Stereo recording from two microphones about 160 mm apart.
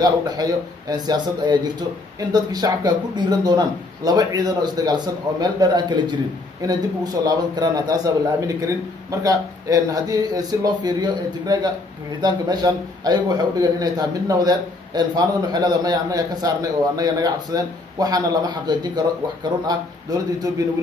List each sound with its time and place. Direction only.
0.0 s a man's voice: 25° right (ahead or behind)